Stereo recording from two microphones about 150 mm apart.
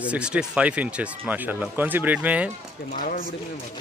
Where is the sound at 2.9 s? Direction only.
60° left (ahead or behind).